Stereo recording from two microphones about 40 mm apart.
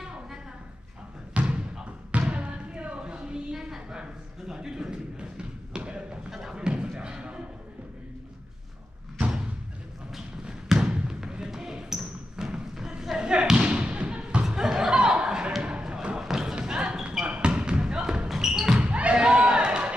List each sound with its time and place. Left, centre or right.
1.3 s a sound: right
2.1 s music: right
3.5 s a sound: centre
5.9 s thump: right
6.5 s a sound: right
10.4 s trickle: centre
10.9 s basketball bounce: right
13.2 s thump: right
14.4 s laughter: centre
15.8 s thump: right
16.2 s thump: centre
16.6 s basketball bounce: centre
18.8 s thump: right